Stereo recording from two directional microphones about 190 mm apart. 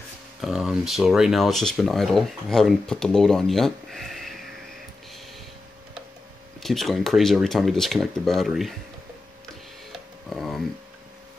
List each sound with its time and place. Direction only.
0.4 s speech: 5° right (ahead or behind)
6.6 s speech: centre (ahead or behind)
10.3 s a sound: centre (ahead or behind)